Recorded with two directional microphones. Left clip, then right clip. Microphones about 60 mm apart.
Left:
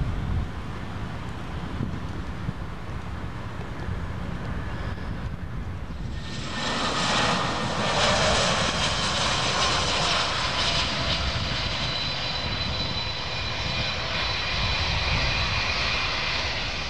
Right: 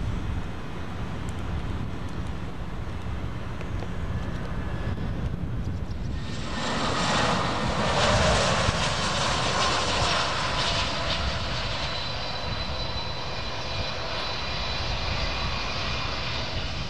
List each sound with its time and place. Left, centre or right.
6.5 s vehicle: centre
12.0 s vehicle: left